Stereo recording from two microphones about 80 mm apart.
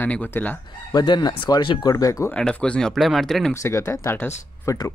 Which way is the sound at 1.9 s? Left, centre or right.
Left.